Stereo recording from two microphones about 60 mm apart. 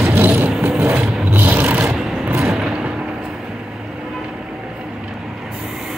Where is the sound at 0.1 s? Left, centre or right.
Right.